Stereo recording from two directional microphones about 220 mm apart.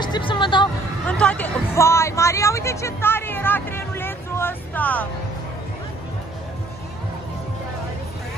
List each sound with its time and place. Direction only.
0.0 s music: 20° left (ahead or behind)
1.0 s speech: 5° left (ahead or behind)